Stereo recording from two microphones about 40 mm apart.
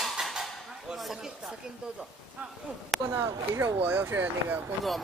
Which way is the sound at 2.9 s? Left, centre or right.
Centre.